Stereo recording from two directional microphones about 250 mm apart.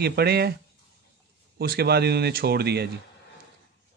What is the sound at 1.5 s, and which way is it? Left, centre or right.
A man's voice, right.